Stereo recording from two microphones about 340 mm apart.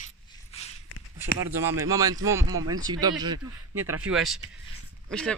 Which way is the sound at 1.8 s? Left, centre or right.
Centre.